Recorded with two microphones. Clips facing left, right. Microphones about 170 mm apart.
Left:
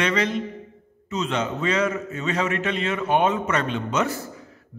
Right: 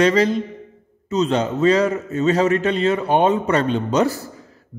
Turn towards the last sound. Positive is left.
turn(degrees=-35)  # may be behind; listen again after turning